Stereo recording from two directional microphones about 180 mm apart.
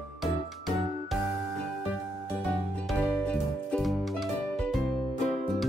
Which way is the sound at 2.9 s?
5° left (ahead or behind).